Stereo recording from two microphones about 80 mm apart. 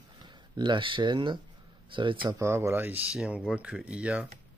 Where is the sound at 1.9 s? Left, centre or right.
Right.